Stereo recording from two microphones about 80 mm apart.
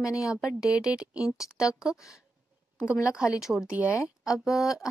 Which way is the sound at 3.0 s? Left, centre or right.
Centre.